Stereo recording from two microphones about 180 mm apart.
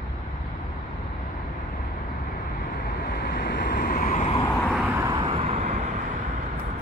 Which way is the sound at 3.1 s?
60° left (ahead or behind).